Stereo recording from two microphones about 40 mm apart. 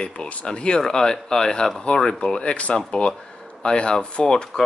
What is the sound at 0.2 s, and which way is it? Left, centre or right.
Speech, left.